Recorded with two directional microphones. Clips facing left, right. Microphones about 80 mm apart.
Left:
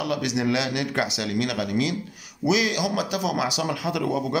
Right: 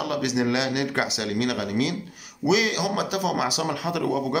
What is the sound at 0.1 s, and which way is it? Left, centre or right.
A man's voice, right.